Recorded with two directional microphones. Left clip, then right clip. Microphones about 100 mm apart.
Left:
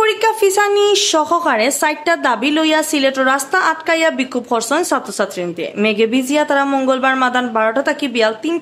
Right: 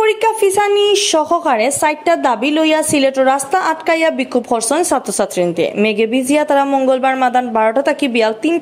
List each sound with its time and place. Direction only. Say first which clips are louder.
0.0 s a woman's voice: right 1 dB; 15° right (ahead or behind); by 8.3 s 30° right (ahead or behind)